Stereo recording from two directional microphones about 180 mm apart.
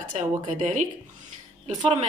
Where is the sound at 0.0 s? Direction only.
45° right (ahead or behind).